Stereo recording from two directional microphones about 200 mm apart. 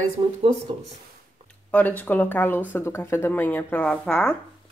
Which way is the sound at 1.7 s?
10° left (ahead or behind).